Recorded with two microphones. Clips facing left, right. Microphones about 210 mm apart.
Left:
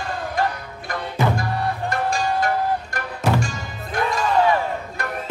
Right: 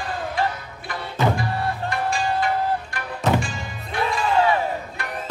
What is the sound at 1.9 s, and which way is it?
Music, 45° left (ahead or behind).